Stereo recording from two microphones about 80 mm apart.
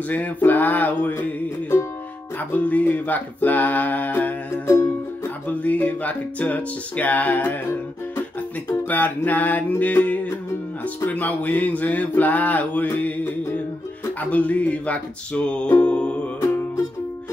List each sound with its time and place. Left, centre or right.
0.1 s mantra: left
2.5 s mantra: left
5.5 s mantra: centre
8.8 s mantra: left
14.3 s music: centre